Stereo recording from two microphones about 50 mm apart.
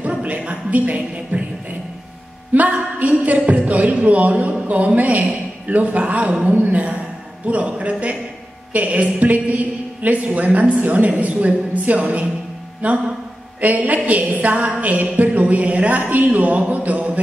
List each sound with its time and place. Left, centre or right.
0.0 s music: right
2.5 s a woman's voice: right